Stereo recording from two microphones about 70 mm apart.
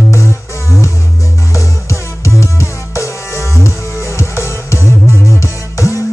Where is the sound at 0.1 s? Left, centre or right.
Left.